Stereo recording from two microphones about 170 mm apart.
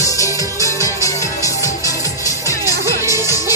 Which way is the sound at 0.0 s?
20° left (ahead or behind).